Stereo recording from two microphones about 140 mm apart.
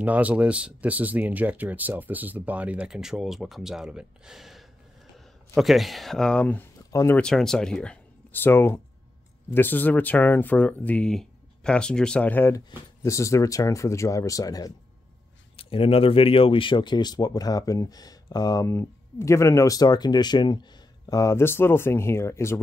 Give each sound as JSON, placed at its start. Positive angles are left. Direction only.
{"t": 0.0, "sound": "speech", "side_deg": -10}
{"t": 6.9, "sound": "speech", "side_deg": 25}
{"t": 7.2, "sound": "speech", "side_deg": 5}
{"t": 15.5, "sound": "speech", "side_deg": 40}